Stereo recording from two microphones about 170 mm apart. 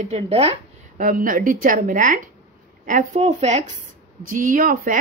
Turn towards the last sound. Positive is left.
turn(degrees=-55)  # may be behind; listen again after turning